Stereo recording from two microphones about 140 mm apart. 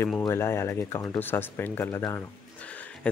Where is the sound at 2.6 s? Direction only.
10° left (ahead or behind).